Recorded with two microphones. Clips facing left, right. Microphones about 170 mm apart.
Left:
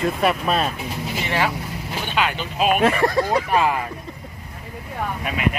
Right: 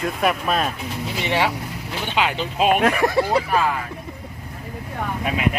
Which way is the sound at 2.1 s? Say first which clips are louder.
Right 1 dB; 25° right (ahead or behind).